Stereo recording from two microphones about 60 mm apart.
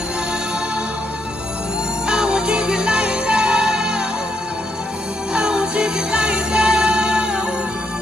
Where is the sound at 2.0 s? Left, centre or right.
Centre.